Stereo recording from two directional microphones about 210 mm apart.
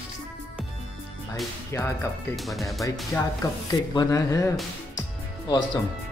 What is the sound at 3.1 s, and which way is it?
Speech, 10° left (ahead or behind).